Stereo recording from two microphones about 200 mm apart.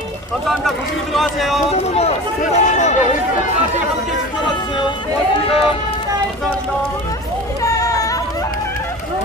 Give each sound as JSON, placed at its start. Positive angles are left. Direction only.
{"t": 0.5, "sound": "speech", "side_deg": 0}
{"t": 1.7, "sound": "speech", "side_deg": 30}
{"t": 5.5, "sound": "speech", "side_deg": 30}
{"t": 7.6, "sound": "a sound", "side_deg": 15}